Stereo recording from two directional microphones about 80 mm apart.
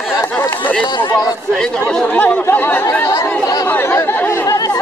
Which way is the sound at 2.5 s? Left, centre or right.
Left.